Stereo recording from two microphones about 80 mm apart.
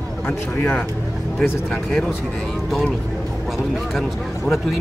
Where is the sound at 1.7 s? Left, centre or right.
Centre.